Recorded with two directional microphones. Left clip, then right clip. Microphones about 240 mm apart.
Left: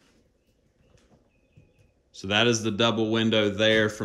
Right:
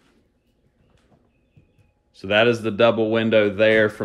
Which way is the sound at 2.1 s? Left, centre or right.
Centre.